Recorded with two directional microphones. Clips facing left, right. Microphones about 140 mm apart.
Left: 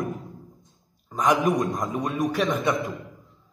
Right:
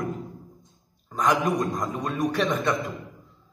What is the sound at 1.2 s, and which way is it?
Speech, 20° left (ahead or behind).